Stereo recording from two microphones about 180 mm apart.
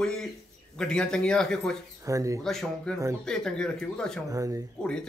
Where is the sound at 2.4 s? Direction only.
Centre (ahead or behind).